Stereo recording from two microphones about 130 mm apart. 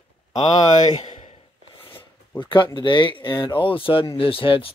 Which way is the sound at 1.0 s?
55° left (ahead or behind).